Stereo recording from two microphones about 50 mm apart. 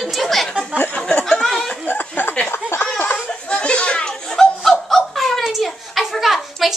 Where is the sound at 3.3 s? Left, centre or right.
Centre.